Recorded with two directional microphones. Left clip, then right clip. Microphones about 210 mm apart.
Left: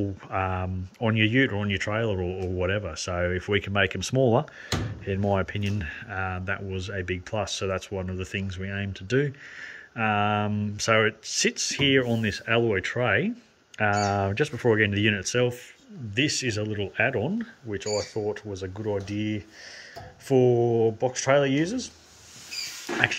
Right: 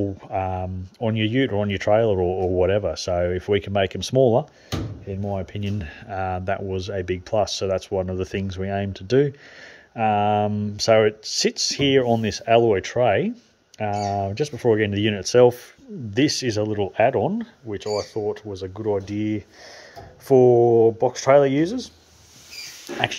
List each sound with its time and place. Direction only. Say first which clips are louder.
0.3 s speech: right 1 dB; 5° right (ahead or behind)
5.4 s speech: left 1 dB; 5° right (ahead or behind)